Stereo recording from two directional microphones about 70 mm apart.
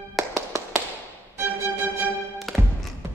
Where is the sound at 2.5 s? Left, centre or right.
Centre.